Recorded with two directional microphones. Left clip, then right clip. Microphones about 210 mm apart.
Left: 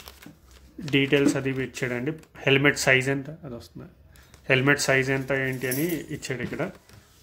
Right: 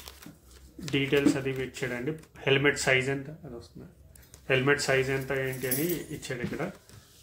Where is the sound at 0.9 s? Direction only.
50° left (ahead or behind).